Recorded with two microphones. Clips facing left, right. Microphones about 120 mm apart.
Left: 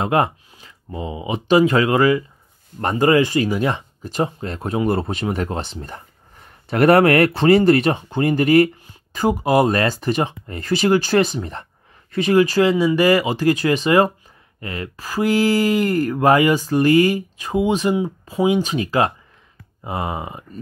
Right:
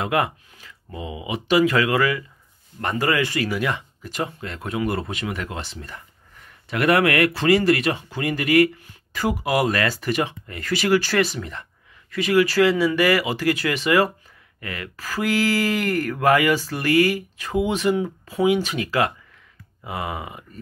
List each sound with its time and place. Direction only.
0.0 s speech: 30° left (ahead or behind)
9.1 s speech: 20° left (ahead or behind)